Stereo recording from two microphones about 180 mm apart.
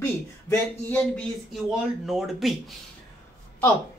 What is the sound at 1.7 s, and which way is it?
Speech, centre (ahead or behind).